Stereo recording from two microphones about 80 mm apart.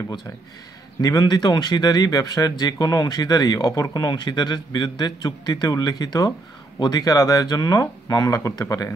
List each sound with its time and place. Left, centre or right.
1.0 s speech: left